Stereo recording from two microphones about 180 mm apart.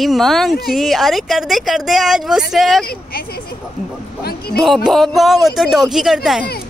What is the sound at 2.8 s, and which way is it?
Speech, 55° left (ahead or behind).